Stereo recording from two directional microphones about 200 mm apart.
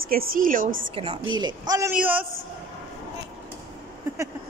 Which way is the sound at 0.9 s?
25° right (ahead or behind).